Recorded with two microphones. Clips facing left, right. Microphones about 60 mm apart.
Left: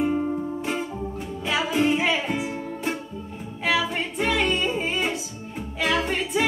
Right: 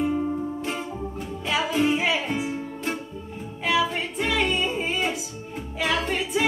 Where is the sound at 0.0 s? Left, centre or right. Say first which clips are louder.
Left 1 dB; centre.